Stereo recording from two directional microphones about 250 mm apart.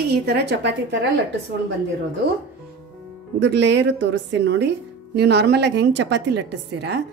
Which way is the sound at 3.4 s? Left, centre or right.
Right.